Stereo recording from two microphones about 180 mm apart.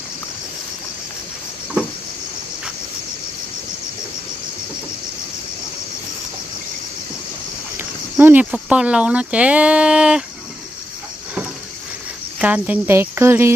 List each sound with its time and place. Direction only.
8.2 s speech: 10° right (ahead or behind)
12.4 s speech: 10° right (ahead or behind)